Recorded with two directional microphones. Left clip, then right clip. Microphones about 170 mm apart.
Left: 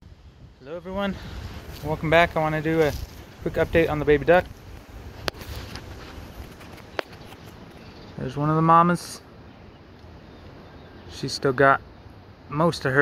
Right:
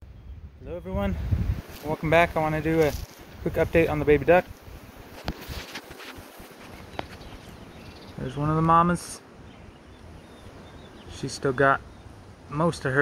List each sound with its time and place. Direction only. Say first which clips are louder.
0.7 s speech: left 2 dB; centre (ahead or behind)
8.2 s speech: left 3 dB; 20° left (ahead or behind)
11.1 s speech: left 3 dB; 10° left (ahead or behind)